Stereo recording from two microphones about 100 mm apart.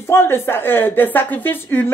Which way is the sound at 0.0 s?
25° left (ahead or behind).